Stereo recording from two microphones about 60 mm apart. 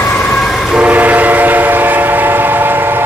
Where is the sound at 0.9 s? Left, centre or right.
Right.